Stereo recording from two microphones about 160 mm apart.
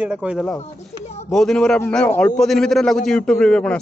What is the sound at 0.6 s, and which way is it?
Speech, 45° left (ahead or behind).